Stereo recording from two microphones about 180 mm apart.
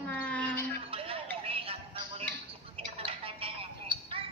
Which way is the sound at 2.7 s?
30° right (ahead or behind).